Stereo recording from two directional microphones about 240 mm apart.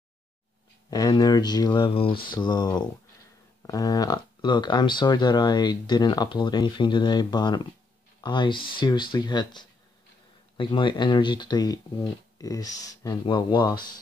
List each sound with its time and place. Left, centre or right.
0.8 s speech: centre